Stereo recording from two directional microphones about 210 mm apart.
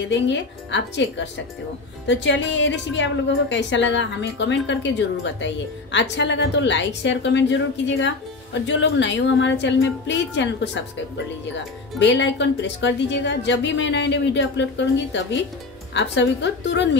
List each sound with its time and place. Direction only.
0.1 s a woman's voice: 60° left (ahead or behind)
12.0 s a woman's voice: 60° left (ahead or behind)
15.9 s a woman's voice: 60° left (ahead or behind)